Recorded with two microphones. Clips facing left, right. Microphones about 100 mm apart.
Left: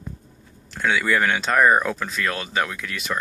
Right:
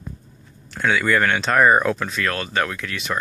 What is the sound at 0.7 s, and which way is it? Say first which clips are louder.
Speech: right 2 dB; centre (ahead or behind).